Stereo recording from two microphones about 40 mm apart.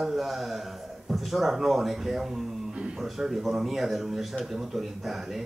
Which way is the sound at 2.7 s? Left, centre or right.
Right.